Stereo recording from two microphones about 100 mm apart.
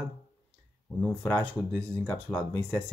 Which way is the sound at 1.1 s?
15° left (ahead or behind).